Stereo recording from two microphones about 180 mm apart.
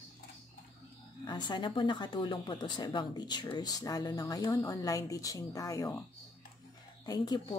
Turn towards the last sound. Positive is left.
turn(degrees=25)  # may be behind; listen again after turning